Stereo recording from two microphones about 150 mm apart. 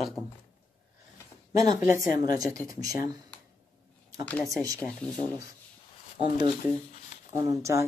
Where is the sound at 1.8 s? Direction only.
60° left (ahead or behind).